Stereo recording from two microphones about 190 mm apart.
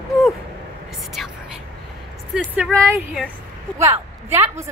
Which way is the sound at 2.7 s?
15° right (ahead or behind).